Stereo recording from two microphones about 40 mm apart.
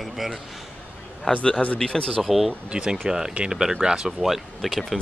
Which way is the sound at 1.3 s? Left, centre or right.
Left.